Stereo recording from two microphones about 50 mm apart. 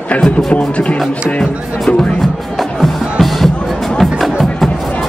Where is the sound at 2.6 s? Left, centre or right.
Centre.